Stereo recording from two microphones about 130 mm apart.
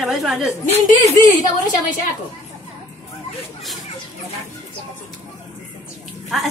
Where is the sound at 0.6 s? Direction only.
55° left (ahead or behind).